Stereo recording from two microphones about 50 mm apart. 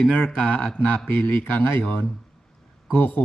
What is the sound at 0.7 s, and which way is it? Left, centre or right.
Speech, left.